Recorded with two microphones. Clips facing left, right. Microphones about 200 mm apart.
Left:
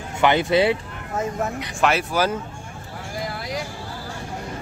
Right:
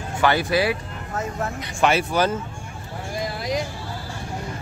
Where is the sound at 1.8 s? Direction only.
Centre (ahead or behind).